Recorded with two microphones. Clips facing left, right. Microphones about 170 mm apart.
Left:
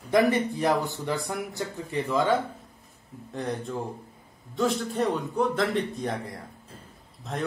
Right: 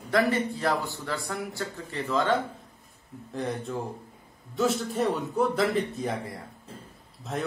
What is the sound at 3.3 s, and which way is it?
A man's voice, centre (ahead or behind).